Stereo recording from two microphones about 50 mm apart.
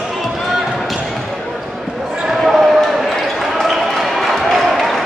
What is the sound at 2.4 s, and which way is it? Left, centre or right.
Basketball bounce, centre.